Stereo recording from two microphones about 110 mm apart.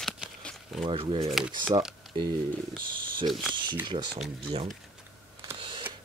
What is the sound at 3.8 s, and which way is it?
Speech, 45° right (ahead or behind).